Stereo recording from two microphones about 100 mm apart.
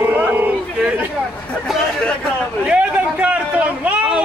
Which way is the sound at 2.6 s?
10° right (ahead or behind).